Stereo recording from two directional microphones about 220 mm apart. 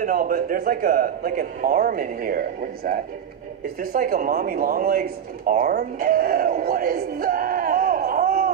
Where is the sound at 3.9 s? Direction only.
40° right (ahead or behind).